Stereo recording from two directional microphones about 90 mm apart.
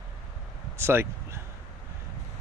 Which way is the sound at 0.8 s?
25° right (ahead or behind).